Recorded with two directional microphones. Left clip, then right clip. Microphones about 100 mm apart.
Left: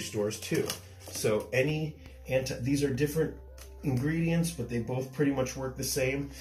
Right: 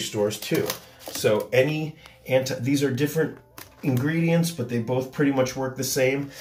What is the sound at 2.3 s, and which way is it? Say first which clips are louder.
Speech: right 7 dB; 20° right (ahead or behind).